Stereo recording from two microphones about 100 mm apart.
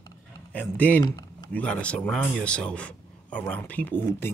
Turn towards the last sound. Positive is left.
turn(degrees=20)  # may be behind; listen again after turning